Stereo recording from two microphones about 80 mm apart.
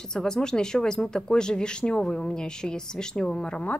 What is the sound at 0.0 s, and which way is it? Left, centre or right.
Speech, centre.